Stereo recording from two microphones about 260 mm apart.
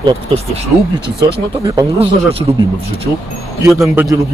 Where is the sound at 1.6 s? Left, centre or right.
Centre.